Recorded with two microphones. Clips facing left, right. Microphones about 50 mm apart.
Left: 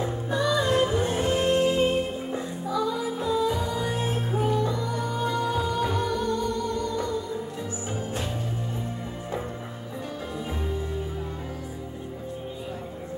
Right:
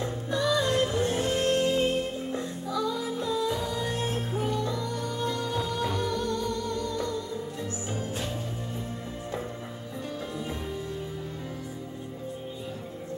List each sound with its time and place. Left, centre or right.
0.0 s music: centre